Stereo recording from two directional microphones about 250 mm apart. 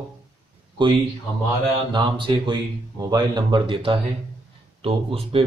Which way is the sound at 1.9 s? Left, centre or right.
Centre.